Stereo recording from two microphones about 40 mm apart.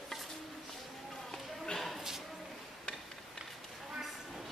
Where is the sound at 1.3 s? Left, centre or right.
Centre.